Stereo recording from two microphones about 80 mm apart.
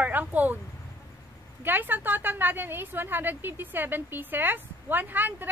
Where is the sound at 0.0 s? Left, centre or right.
Centre.